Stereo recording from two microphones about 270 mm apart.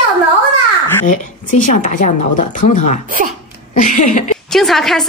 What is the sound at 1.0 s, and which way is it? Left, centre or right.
Speech, left.